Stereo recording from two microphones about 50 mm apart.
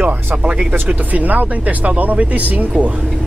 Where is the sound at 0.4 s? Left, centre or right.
Right.